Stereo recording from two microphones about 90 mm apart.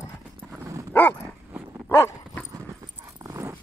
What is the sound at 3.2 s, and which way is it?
Dog, 35° right (ahead or behind).